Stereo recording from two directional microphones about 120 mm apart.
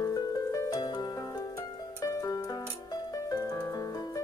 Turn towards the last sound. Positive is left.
turn(degrees=30)  # may be behind; listen again after turning